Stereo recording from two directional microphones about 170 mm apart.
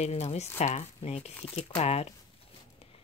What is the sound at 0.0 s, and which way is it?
Speech, 40° left (ahead or behind).